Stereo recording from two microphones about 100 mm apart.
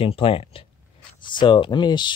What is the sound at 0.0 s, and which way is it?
Speech, 70° left (ahead or behind).